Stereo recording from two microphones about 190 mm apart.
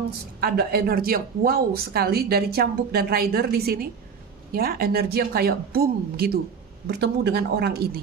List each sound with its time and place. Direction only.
0.4 s speech: 55° right (ahead or behind)